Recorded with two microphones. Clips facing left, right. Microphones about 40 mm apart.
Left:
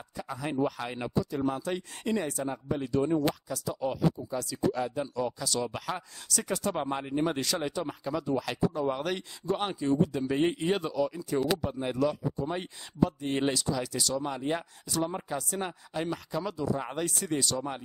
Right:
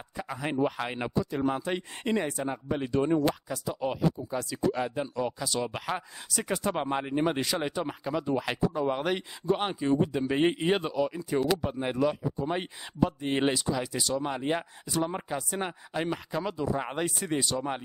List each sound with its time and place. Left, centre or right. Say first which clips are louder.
0.2 s a man's voice: right 1 dB; right